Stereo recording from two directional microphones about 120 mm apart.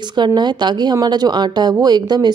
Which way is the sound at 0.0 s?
40° right (ahead or behind).